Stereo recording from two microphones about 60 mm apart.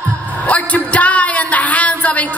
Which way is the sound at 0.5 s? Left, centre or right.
Left.